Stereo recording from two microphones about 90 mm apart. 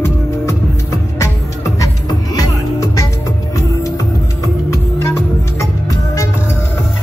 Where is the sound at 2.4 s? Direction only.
40° left (ahead or behind).